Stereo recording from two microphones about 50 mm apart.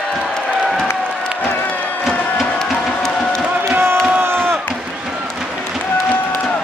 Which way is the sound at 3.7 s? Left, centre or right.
Right.